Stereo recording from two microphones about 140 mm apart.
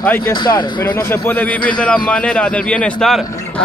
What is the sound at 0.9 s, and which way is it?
Speech, 15° left (ahead or behind).